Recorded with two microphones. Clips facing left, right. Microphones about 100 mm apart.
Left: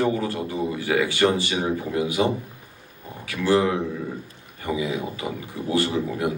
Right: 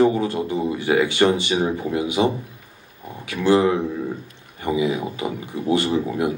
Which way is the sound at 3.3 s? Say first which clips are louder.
Right 3 dB; 20° right (ahead or behind).